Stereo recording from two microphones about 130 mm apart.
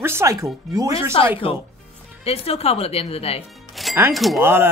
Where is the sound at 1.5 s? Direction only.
45° left (ahead or behind).